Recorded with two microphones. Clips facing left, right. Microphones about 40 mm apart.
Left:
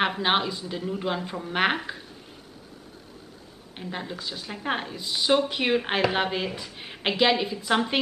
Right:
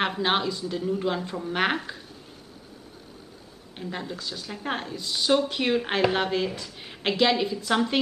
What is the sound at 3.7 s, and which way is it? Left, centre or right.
Speech, centre.